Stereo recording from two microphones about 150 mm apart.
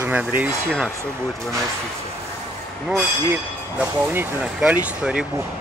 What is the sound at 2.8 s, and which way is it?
Speech, 10° right (ahead or behind).